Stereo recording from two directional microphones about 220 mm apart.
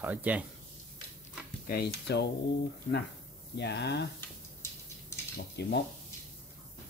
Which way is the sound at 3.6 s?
50° left (ahead or behind).